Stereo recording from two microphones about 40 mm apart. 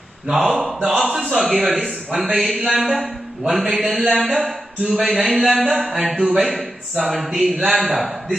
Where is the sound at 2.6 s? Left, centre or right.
Centre.